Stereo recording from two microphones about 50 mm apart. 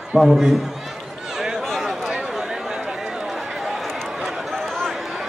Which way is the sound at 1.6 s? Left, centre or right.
Centre.